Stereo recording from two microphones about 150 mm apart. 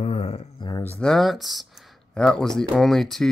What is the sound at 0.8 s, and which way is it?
Speech, 10° left (ahead or behind).